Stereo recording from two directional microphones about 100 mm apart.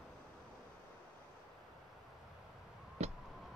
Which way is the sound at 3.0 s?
90° right.